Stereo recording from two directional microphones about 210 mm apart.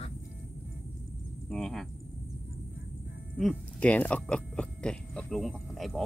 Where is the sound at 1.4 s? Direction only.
Centre (ahead or behind).